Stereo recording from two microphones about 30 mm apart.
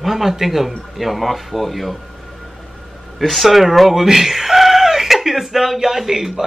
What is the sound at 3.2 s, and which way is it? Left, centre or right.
Speech, centre.